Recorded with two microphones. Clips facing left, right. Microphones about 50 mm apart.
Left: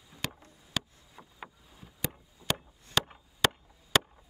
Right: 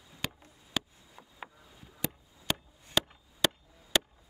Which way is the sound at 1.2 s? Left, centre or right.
Centre.